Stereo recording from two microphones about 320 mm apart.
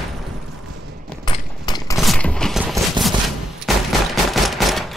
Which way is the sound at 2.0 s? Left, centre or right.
Centre.